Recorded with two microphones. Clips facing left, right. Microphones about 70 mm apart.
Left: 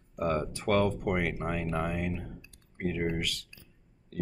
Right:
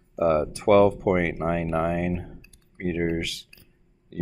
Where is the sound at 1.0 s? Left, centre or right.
Right.